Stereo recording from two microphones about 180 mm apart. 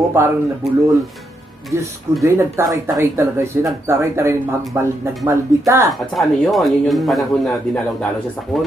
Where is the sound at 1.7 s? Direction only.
15° right (ahead or behind).